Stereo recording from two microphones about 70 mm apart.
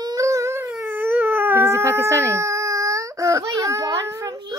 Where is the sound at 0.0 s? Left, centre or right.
Right.